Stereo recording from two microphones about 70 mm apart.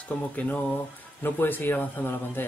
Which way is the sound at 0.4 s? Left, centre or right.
Left.